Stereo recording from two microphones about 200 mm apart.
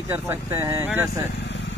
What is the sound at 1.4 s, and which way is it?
Vehicle, 65° left (ahead or behind).